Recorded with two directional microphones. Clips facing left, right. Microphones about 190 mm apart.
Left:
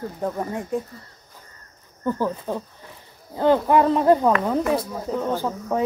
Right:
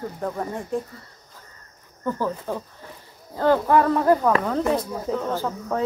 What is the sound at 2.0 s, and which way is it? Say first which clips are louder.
Speech: left 2 dB; 15° left (ahead or behind).